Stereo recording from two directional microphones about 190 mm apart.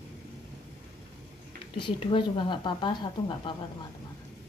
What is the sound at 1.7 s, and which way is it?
Speech, 25° left (ahead or behind).